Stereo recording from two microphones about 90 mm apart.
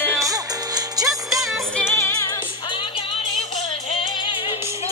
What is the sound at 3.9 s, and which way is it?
Music, 85° left.